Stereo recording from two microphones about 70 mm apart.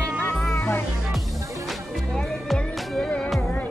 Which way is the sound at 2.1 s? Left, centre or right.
Centre.